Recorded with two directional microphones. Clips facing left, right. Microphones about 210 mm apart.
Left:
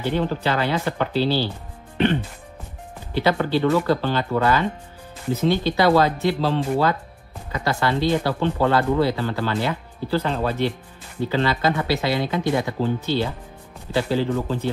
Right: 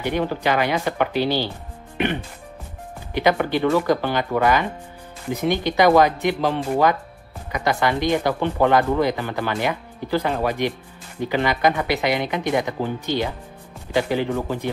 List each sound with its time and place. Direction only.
0.0 s speech: 15° right (ahead or behind)
3.2 s speech: 15° right (ahead or behind)